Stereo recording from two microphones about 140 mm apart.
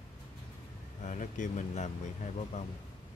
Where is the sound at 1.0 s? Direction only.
60° left (ahead or behind).